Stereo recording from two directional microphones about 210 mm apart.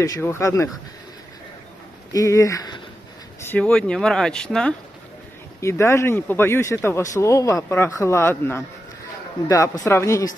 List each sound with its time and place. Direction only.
0.0 s speech: 15° left (ahead or behind)
2.1 s speech: 15° left (ahead or behind)
3.4 s speech: 5° left (ahead or behind)